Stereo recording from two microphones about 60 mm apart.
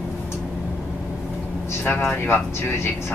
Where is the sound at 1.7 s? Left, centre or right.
Left.